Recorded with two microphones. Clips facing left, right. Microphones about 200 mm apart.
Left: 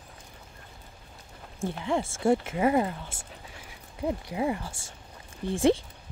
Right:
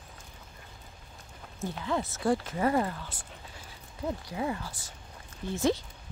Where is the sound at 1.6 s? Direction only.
30° left (ahead or behind).